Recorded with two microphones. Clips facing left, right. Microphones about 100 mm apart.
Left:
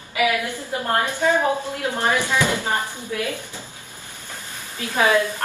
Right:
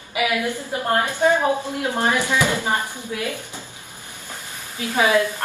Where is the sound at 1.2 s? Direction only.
15° right (ahead or behind).